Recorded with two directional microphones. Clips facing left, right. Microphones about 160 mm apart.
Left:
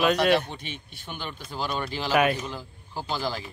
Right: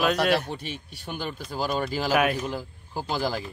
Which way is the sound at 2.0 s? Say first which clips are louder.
Left 2 dB; 5° right (ahead or behind).